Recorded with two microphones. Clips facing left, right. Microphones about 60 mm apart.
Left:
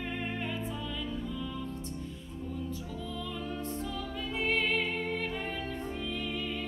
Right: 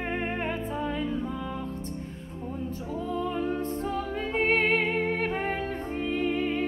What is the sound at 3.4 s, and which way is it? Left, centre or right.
Music, right.